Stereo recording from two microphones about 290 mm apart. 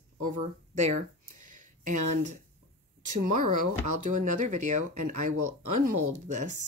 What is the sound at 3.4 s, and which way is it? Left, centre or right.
Speech, right.